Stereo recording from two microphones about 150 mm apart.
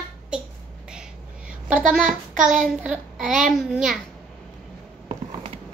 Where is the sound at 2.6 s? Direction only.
5° right (ahead or behind).